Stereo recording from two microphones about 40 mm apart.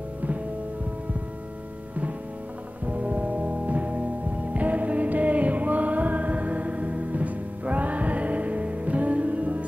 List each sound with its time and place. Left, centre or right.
2.9 s music: right